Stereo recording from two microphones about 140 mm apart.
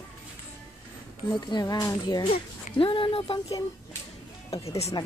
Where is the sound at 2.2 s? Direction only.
40° left (ahead or behind).